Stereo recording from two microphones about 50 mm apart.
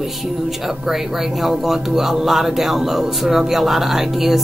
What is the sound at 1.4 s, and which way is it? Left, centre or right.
Speech, centre.